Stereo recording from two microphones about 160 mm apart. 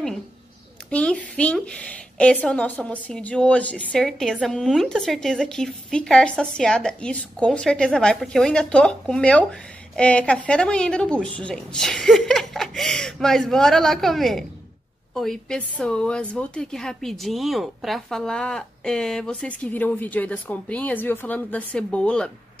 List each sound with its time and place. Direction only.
0.8 s a woman's voice: 5° left (ahead or behind)